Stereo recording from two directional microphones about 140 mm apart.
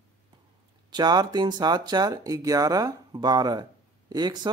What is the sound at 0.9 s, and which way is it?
Speech, 30° right (ahead or behind).